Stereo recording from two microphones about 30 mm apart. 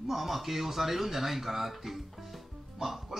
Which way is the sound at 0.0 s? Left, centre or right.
Centre.